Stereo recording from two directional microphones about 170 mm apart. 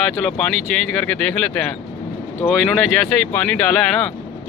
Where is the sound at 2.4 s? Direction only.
Centre (ahead or behind).